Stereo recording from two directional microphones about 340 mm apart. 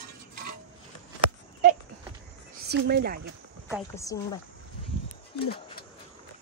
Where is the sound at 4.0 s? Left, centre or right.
Centre.